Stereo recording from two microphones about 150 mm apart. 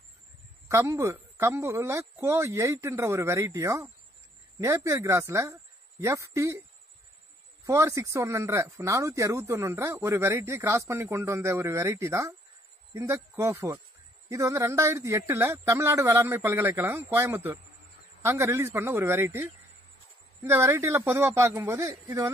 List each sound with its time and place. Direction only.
0.7 s speech: 20° right (ahead or behind)
7.6 s speech: 20° right (ahead or behind)